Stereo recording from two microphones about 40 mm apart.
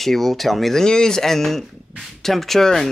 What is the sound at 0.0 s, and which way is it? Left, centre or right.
Speech, centre.